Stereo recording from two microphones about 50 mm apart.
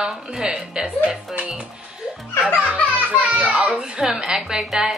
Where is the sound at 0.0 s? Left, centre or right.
Centre.